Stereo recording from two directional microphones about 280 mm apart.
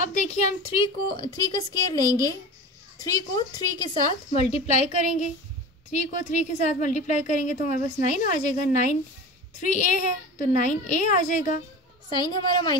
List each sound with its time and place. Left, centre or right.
0.0 s a woman's voice: left
12.1 s a woman's voice: centre